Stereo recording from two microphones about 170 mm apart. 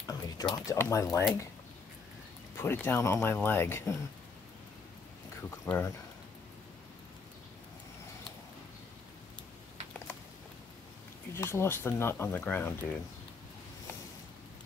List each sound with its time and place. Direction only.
0.1 s speech: 20° left (ahead or behind)
2.5 s speech: 15° left (ahead or behind)
5.7 s speech: 10° left (ahead or behind)
11.3 s speech: 15° left (ahead or behind)